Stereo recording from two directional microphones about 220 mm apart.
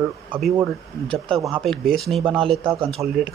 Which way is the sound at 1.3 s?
25° right (ahead or behind).